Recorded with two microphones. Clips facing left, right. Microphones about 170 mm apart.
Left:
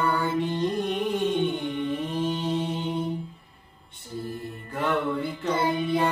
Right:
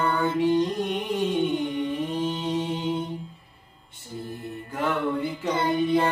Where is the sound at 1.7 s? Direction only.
35° right (ahead or behind).